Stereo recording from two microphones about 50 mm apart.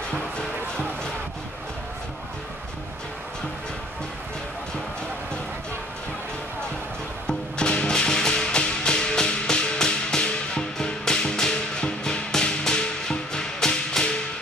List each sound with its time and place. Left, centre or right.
0.1 s music: centre
7.2 s music: centre